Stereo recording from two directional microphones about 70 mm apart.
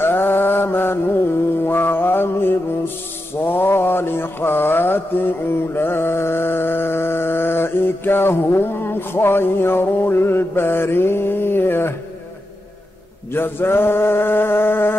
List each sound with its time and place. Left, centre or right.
0.0 s music: left
3.3 s mantra: left
13.3 s mantra: left